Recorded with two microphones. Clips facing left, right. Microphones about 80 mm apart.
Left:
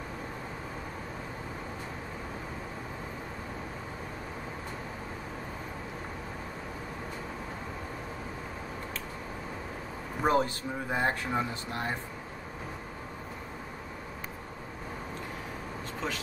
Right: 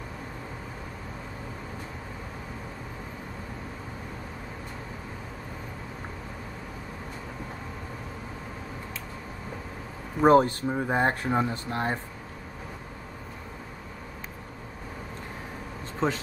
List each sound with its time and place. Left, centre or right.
10.2 s speech: right
16.0 s speech: right